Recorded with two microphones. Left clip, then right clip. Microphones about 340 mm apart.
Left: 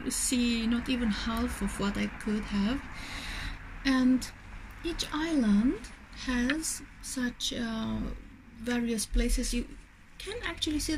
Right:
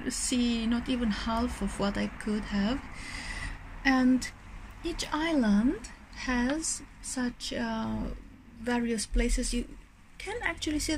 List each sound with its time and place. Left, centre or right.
0.0 s speech: centre
6.4 s speech: centre
7.2 s speech: centre